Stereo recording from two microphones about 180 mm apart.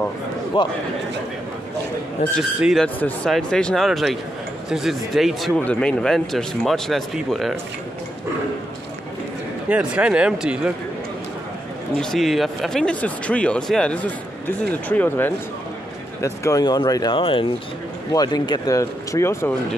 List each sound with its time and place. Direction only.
0.5 s speech: 30° left (ahead or behind)
2.6 s speech: centre (ahead or behind)
9.7 s speech: 5° right (ahead or behind)
12.0 s speech: centre (ahead or behind)